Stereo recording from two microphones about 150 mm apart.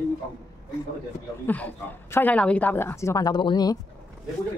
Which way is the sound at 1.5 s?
10° left (ahead or behind).